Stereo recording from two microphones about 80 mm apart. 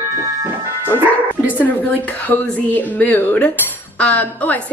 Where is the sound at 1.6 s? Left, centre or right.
Left.